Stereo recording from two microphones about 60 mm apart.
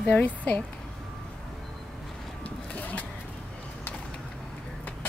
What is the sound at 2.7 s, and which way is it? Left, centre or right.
Vehicle, left.